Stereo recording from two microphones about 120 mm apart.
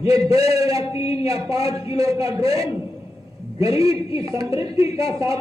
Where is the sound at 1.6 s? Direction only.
55° left (ahead or behind).